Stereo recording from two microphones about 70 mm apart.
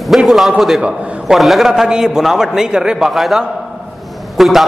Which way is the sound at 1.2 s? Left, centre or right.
Centre.